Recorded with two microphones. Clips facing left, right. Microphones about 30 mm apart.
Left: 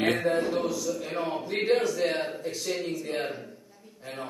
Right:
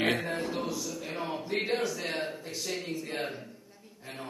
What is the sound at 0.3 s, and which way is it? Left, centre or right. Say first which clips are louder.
A man's voice: left 6 dB; centre.